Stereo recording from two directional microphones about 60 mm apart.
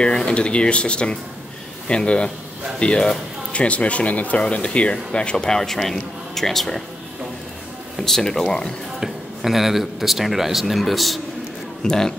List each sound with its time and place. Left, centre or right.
0.0 s speech: centre
8.0 s speech: centre
9.0 s a man's voice: centre